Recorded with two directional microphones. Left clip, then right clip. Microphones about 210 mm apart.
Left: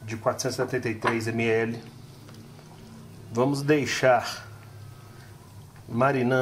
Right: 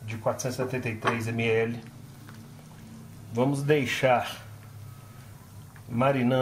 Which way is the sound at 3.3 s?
15° left (ahead or behind).